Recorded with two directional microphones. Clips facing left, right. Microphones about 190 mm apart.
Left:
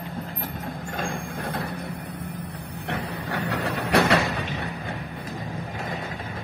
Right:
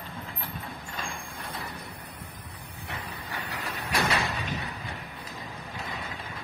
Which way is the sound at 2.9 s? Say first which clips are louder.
Left 9 dB; 75° left (ahead or behind).